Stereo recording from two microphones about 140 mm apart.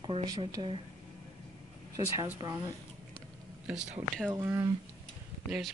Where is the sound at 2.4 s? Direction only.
30° right (ahead or behind).